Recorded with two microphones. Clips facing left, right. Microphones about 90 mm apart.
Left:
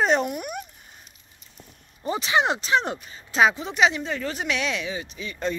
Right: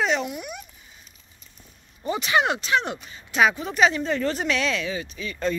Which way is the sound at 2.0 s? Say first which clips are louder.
Even; 25° left (ahead or behind).